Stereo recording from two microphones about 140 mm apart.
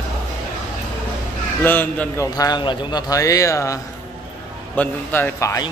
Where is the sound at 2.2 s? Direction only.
25° left (ahead or behind).